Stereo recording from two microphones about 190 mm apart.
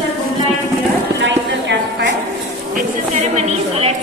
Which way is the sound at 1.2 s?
70° right (ahead or behind).